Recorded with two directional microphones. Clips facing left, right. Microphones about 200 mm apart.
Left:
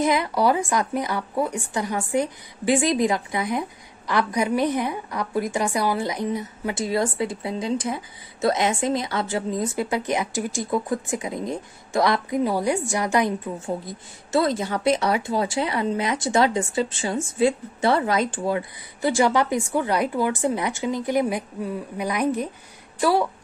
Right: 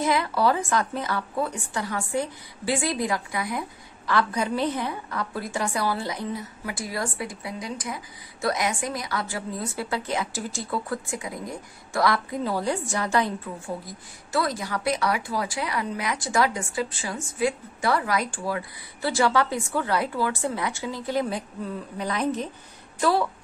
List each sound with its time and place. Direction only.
0.0 s a woman's voice: 20° left (ahead or behind)